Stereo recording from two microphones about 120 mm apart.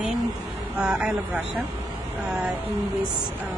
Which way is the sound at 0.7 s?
10° right (ahead or behind).